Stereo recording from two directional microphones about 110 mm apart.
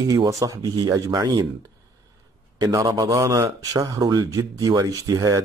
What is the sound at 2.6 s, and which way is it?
Speech, 30° right (ahead or behind).